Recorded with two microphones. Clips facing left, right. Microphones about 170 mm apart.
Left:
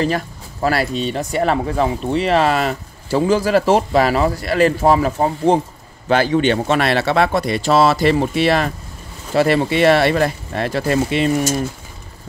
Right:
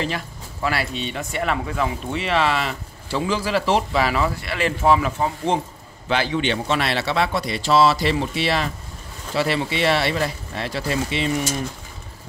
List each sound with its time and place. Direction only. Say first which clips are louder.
0.0 s speech: left 7 dB; 40° left (ahead or behind)